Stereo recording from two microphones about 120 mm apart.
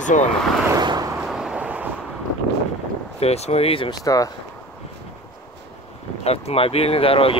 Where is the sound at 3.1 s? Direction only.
60° left (ahead or behind).